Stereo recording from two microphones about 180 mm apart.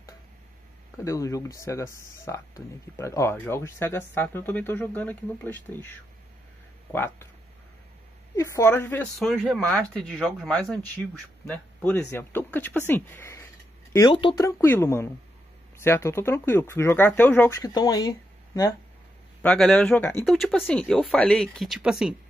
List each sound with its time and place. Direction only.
1.0 s speech: 20° left (ahead or behind)
8.4 s speech: 15° left (ahead or behind)
9.3 s speech: centre (ahead or behind)
13.9 s speech: 25° left (ahead or behind); by 17.6 s 10° left (ahead or behind)
17.6 s speech: 20° left (ahead or behind)
19.4 s speech: 5° left (ahead or behind)